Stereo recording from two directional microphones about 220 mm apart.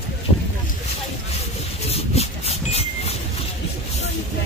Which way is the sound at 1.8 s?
30° left (ahead or behind).